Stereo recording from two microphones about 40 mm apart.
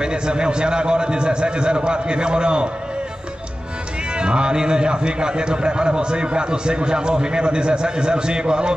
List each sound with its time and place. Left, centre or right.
0.0 s a man's voice: right
4.2 s a man's voice: right